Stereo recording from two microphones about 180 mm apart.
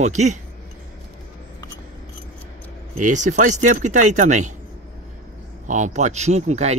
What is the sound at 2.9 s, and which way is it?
Speech, 45° right (ahead or behind).